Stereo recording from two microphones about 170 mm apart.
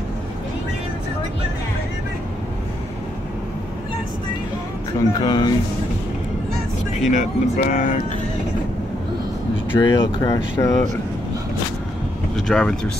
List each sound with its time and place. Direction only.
5.2 s speech: 25° left (ahead or behind)
7.1 s speech: 50° left (ahead or behind)
9.8 s speech: 25° left (ahead or behind)
12.4 s speech: 5° left (ahead or behind)